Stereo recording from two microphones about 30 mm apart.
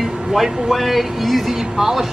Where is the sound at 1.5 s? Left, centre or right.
Centre.